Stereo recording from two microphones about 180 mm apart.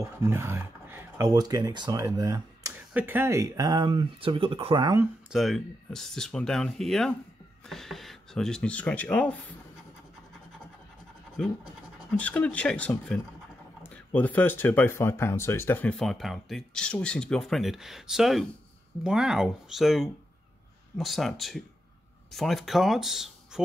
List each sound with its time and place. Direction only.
0.0 s speech: 15° right (ahead or behind)
5.3 s speech: centre (ahead or behind)
11.3 s speech: 5° left (ahead or behind)